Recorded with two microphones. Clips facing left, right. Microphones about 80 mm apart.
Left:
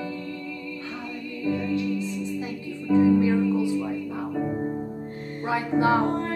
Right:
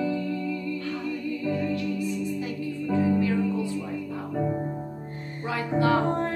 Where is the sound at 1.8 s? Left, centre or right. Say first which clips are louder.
Left 1 dB; left.